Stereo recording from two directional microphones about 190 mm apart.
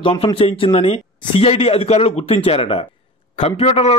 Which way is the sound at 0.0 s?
30° left (ahead or behind).